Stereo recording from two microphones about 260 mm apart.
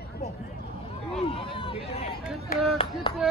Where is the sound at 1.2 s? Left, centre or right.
Centre.